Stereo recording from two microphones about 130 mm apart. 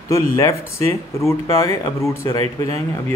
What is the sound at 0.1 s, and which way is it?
Speech, 25° left (ahead or behind).